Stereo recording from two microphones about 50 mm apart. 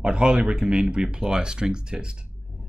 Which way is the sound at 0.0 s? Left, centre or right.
Centre.